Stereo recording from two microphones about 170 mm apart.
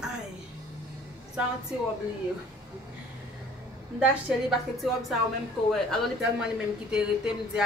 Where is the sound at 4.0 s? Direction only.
Centre (ahead or behind).